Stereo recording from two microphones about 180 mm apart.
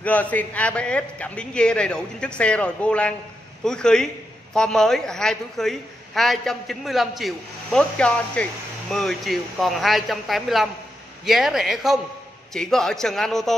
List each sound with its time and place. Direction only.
0.0 s a man's voice: 10° left (ahead or behind)